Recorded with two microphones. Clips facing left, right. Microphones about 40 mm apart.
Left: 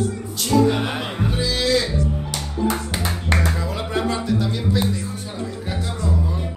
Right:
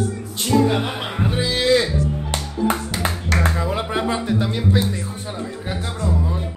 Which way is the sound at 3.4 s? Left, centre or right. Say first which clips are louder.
Right 3 dB; right.